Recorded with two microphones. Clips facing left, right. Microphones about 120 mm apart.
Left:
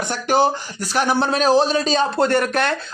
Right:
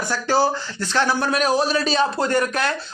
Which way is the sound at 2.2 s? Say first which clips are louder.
Left 3 dB; 60° left (ahead or behind).